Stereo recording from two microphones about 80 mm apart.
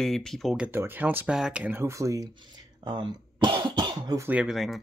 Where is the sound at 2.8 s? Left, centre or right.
Right.